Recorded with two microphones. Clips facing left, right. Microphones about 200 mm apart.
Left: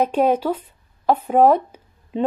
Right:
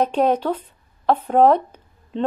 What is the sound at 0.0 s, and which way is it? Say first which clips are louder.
A woman's voice: left 1 dB; 10° left (ahead or behind).